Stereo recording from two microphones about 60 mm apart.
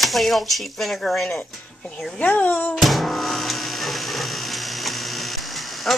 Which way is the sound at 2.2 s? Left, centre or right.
Left.